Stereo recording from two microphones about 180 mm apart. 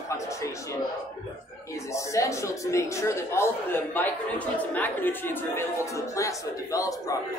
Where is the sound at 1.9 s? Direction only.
15° left (ahead or behind).